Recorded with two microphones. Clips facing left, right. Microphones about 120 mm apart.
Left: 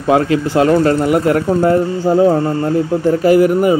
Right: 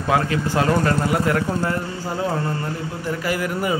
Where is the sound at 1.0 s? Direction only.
25° left (ahead or behind).